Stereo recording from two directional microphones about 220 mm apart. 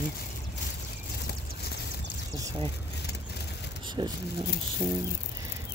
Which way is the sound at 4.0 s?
20° right (ahead or behind).